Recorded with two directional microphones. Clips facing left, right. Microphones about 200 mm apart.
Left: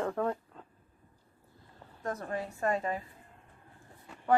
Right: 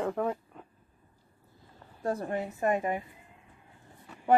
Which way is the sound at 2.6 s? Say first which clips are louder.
Right 3 dB; 15° right (ahead or behind).